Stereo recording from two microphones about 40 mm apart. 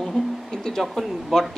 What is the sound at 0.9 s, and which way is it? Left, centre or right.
Speech, centre.